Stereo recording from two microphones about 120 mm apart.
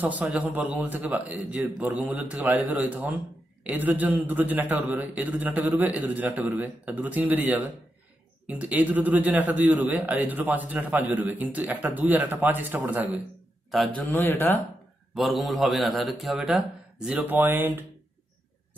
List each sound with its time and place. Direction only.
0.2 s a man's voice: 5° right (ahead or behind)
13.9 s a man's voice: 15° left (ahead or behind)
15.1 s a man's voice: centre (ahead or behind)
17.2 s speech: 20° right (ahead or behind)